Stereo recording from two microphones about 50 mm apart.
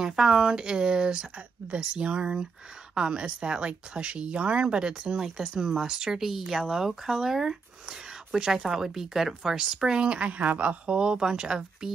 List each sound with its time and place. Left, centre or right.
0.0 s speech: centre; by 11.0 s right
11.0 s speech: centre